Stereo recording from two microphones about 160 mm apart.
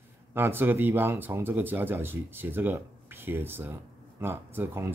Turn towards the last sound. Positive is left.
turn(degrees=-15)  # may be behind; listen again after turning